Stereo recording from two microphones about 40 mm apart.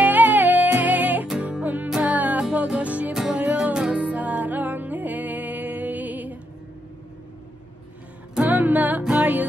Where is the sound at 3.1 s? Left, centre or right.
Centre.